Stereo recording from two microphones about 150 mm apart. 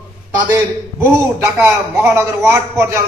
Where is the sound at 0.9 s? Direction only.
15° right (ahead or behind).